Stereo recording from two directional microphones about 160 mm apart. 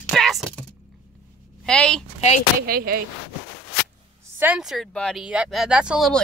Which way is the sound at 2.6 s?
65° right (ahead or behind).